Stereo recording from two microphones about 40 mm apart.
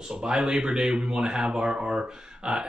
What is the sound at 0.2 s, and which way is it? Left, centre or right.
Speech, right.